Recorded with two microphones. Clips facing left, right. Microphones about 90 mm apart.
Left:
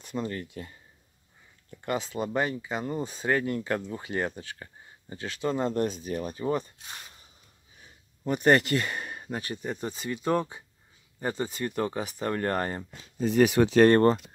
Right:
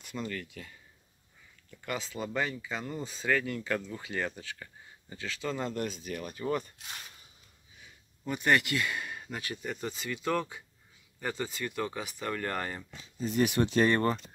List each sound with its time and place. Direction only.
0.0 s speech: 30° left (ahead or behind)
2.0 s speech: 45° left (ahead or behind)
3.3 s speech: 35° left (ahead or behind)
5.5 s speech: 35° left (ahead or behind)
7.8 s speech: 40° left (ahead or behind)
13.0 s speech: 70° left (ahead or behind)